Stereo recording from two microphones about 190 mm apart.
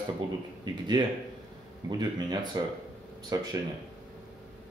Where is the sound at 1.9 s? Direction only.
20° right (ahead or behind).